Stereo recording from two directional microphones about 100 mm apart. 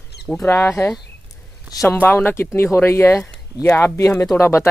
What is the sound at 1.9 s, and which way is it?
Speech, 20° left (ahead or behind).